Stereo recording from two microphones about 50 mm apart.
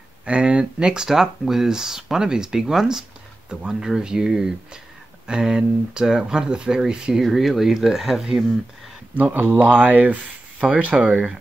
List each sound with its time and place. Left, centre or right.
0.2 s speech: right
7.2 s speech: centre
9.1 s speech: right